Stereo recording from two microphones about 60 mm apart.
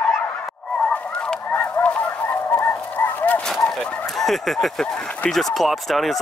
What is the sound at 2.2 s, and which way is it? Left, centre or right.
Fowl, left.